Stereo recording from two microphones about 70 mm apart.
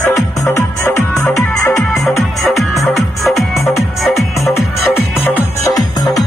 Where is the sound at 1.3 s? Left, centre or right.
Centre.